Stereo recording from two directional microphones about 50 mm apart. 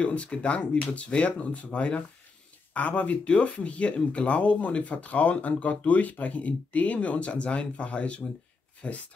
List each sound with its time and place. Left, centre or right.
0.0 s speech: left